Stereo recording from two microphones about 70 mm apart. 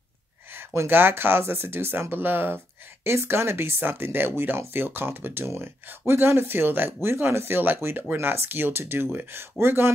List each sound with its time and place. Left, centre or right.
0.5 s speech: right